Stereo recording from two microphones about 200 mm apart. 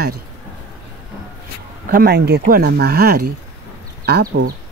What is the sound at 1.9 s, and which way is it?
Speech, 50° right (ahead or behind).